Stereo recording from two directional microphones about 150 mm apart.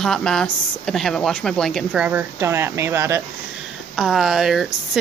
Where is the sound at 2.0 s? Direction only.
15° right (ahead or behind).